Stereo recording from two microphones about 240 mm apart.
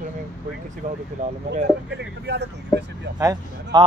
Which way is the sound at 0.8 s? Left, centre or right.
Right.